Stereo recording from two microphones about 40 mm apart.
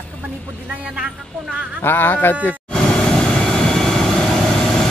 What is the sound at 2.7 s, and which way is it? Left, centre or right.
Vehicle, left.